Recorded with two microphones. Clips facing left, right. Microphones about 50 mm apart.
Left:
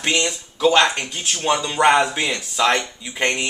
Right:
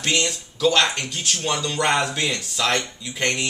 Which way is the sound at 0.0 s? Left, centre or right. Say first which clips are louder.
Left 2 dB; centre.